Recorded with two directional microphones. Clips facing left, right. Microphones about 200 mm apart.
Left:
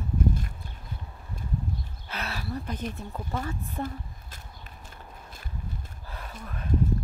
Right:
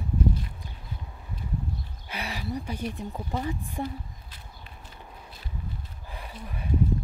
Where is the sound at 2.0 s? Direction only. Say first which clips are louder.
Right 2 dB; 15° right (ahead or behind).